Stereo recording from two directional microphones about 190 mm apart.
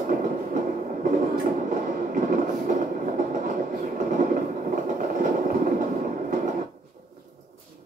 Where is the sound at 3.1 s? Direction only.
45° right (ahead or behind).